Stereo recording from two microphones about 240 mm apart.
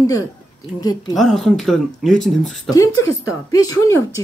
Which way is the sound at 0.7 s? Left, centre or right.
Centre.